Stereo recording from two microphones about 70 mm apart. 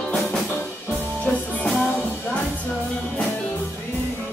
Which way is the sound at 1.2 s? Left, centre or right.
Centre.